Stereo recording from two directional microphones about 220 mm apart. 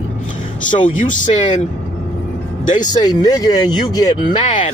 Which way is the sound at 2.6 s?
35° left (ahead or behind).